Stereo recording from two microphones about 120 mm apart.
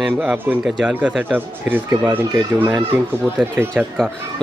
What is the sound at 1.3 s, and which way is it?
Speech, 15° right (ahead or behind).